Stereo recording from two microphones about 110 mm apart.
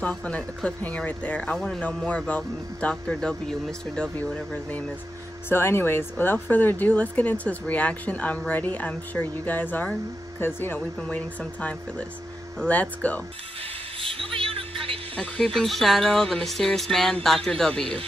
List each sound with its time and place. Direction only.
0.0 s speech: 10° left (ahead or behind)
5.5 s speech: 20° left (ahead or behind)
14.0 s music: 55° right (ahead or behind)
15.1 s speech: 10° left (ahead or behind)